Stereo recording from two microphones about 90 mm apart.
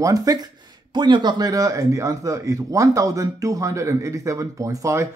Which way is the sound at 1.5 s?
40° right (ahead or behind).